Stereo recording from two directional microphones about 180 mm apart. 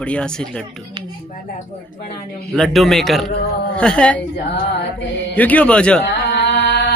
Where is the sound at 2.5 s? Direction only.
Centre (ahead or behind).